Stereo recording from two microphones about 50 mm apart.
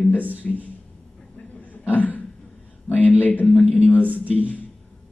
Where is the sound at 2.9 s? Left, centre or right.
Left.